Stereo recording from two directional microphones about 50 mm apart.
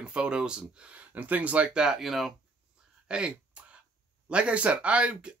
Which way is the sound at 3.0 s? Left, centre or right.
Right.